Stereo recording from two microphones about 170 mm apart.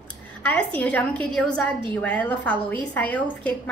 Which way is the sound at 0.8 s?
10° left (ahead or behind).